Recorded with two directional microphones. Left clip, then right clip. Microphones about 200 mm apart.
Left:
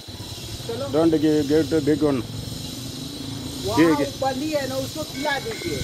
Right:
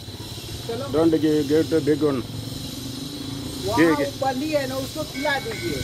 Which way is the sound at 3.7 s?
60° left (ahead or behind).